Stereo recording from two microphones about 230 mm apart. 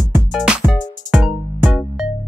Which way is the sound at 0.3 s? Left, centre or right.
Centre.